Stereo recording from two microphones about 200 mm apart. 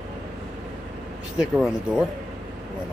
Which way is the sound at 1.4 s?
5° right (ahead or behind).